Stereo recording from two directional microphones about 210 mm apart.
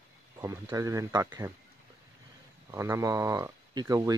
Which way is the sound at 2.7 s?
15° right (ahead or behind).